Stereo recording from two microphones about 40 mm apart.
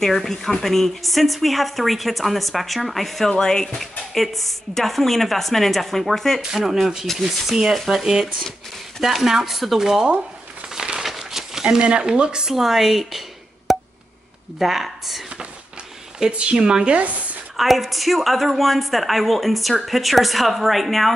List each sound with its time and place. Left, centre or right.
0.0 s a woman's voice: centre
6.6 s a woman's voice: centre
7.1 s speech: centre
7.5 s speech: centre
9.0 s speech: centre
10.7 s crumpling: centre
11.1 s a sound: centre
11.8 s speech: right; by 13.2 s centre
13.7 s a sound: centre
14.6 s a woman's voice: centre
16.3 s speech: right
17.0 s speech: right
17.6 s a woman's voice: centre